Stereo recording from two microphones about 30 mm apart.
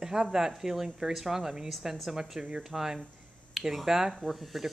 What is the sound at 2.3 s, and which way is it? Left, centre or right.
Speech, right.